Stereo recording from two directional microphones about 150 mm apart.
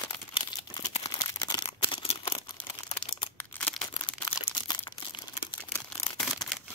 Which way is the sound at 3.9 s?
35° left (ahead or behind).